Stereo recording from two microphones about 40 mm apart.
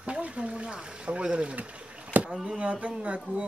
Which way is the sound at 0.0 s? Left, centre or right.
Right.